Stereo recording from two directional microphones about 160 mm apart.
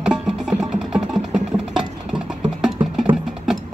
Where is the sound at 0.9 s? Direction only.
5° right (ahead or behind).